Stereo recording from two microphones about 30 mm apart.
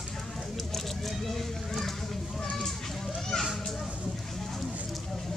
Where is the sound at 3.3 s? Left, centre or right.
Centre.